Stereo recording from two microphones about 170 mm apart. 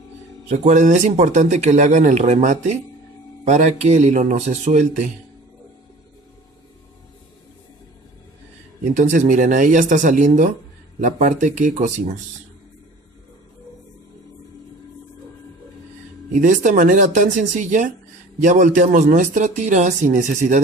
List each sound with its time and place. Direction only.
0.5 s speech: 45° right (ahead or behind)
8.9 s speech: 50° right (ahead or behind)
16.3 s speech: 50° right (ahead or behind)